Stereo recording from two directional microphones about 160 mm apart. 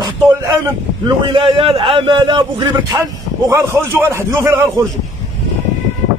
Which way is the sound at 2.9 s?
20° right (ahead or behind).